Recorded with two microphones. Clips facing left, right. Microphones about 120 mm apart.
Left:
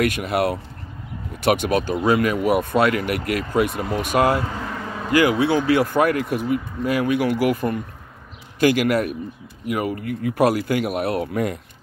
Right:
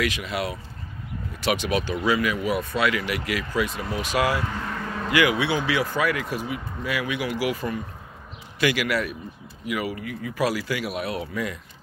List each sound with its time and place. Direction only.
0.0 s speech: 50° left (ahead or behind)
4.6 s vehicle: 15° left (ahead or behind)
5.7 s speech: 50° left (ahead or behind)